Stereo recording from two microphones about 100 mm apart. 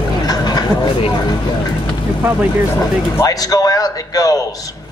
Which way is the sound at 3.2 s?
35° left (ahead or behind).